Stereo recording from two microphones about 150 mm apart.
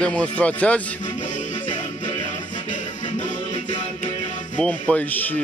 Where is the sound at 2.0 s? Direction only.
55° left (ahead or behind).